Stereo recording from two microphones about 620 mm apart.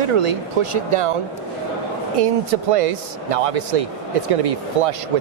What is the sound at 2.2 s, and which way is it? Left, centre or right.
Speech, right.